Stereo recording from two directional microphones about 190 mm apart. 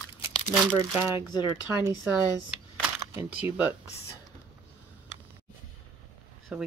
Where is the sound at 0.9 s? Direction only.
10° right (ahead or behind).